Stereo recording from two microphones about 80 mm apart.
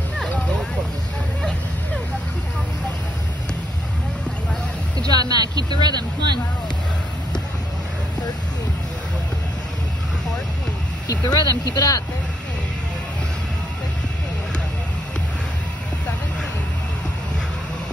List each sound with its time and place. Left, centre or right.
4.9 s speech: right
11.1 s speech: left